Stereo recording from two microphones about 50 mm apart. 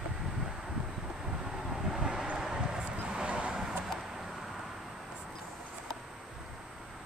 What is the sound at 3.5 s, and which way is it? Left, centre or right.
Vehicle, centre.